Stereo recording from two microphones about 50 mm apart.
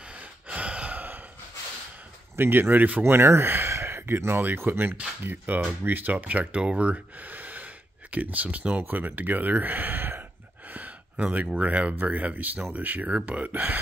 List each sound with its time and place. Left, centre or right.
0.1 s gasp: right
0.9 s a sound: right
2.3 s speech: right
3.0 s speech: right
5.2 s speech: right
10.7 s speech: right